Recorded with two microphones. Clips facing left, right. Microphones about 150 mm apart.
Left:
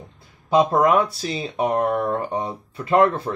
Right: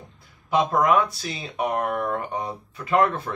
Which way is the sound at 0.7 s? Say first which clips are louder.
Left 3 dB; 30° left (ahead or behind).